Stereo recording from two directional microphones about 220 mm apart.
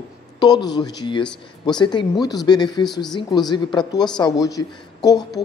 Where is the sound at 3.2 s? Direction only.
20° left (ahead or behind).